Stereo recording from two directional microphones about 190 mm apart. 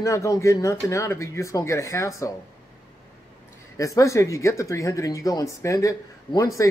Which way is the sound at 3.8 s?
15° left (ahead or behind).